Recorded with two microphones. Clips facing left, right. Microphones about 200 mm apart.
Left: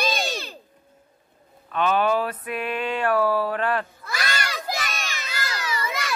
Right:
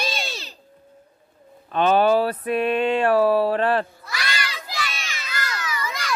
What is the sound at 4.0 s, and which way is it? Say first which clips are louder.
Crowd: left 1 dB; 45° left (ahead or behind).